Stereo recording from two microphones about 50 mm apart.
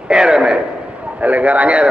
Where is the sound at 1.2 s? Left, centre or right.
Right.